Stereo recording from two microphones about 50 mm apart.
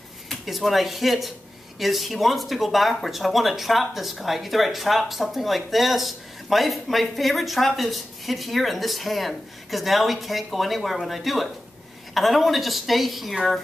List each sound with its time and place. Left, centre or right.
0.3 s speech: centre